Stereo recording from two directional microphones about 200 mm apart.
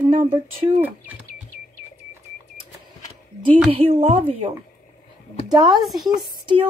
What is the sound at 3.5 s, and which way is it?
Speech, 30° right (ahead or behind).